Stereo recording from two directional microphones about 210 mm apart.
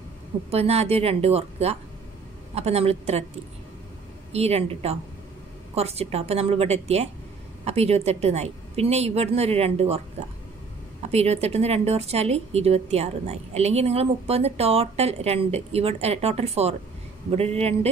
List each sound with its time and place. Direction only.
0.5 s a woman's voice: 30° right (ahead or behind)
4.3 s a woman's voice: 30° right (ahead or behind)